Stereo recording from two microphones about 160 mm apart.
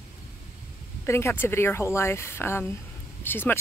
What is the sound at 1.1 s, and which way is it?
Speech, 15° left (ahead or behind).